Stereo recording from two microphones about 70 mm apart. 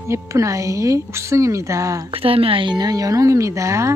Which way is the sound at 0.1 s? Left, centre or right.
Right.